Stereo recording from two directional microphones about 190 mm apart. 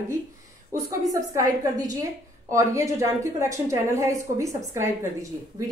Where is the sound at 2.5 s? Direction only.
15° right (ahead or behind).